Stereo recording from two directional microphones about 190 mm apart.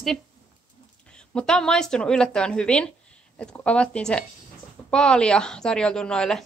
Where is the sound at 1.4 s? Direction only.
5° left (ahead or behind).